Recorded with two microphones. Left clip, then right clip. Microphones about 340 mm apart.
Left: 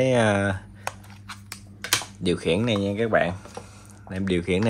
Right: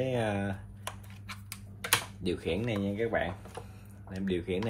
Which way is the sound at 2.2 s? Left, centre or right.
Centre.